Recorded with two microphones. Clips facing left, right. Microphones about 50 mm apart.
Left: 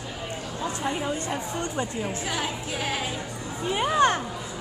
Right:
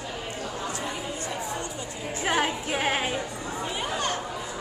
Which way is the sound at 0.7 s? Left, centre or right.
Left.